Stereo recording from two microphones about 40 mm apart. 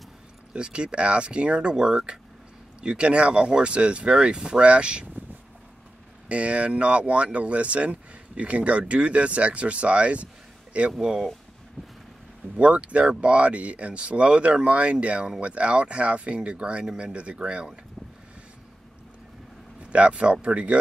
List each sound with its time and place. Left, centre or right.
0.5 s speech: right
6.2 s speech: right
11.0 s speech: centre
12.5 s speech: right
19.8 s speech: right